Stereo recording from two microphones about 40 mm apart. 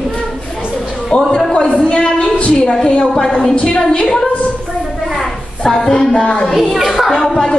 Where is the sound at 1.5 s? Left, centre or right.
Left; by 3.5 s centre.